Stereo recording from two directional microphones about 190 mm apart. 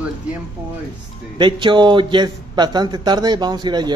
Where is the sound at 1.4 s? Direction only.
25° right (ahead or behind).